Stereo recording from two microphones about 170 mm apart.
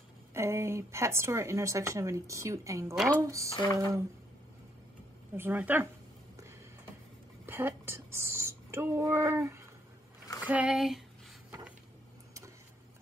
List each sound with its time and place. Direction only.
0.3 s a woman's voice: 15° right (ahead or behind)
5.3 s a woman's voice: 10° right (ahead or behind)
7.4 s speech: 10° right (ahead or behind)
10.4 s a sound: 5° right (ahead or behind)